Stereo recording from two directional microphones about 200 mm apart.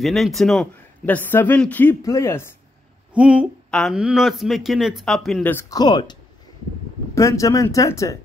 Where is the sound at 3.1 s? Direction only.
5° right (ahead or behind).